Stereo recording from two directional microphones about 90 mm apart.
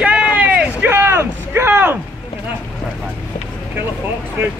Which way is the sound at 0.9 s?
25° right (ahead or behind).